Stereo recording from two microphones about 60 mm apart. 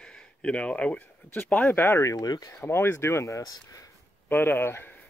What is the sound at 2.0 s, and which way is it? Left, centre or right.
Speech, left.